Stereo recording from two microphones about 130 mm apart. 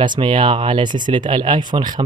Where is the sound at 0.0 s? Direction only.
40° right (ahead or behind).